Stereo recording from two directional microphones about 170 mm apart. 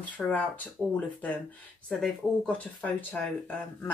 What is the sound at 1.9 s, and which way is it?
Speech, centre (ahead or behind).